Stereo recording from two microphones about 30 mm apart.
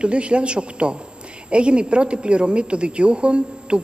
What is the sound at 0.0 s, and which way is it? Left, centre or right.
A woman's voice, right.